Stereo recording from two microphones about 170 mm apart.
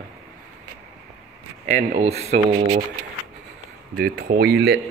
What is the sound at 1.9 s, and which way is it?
Speech, 45° right (ahead or behind).